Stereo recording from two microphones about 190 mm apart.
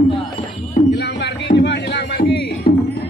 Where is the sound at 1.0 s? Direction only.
60° left (ahead or behind).